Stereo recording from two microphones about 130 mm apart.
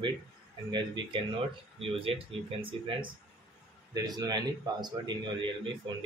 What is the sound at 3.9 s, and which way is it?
Speech, 30° right (ahead or behind).